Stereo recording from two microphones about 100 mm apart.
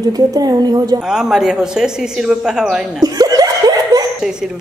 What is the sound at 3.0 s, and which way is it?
Laughter, 40° right (ahead or behind).